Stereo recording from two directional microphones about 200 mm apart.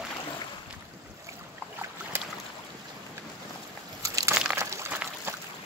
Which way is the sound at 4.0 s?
15° right (ahead or behind).